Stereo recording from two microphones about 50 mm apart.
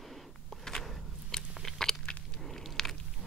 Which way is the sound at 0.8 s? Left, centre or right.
Centre.